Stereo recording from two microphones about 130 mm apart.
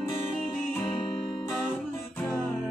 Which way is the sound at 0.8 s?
35° left (ahead or behind).